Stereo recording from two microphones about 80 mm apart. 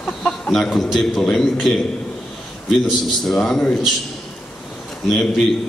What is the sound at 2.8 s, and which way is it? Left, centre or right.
Speech, centre.